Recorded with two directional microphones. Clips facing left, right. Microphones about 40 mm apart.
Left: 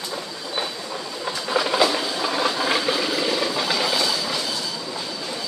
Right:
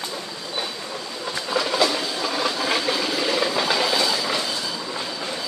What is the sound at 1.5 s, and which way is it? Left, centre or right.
Train, centre.